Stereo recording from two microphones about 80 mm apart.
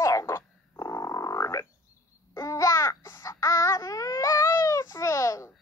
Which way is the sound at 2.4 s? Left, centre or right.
Left.